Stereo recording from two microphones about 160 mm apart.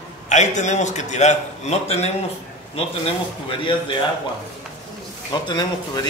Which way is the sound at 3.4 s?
30° left (ahead or behind).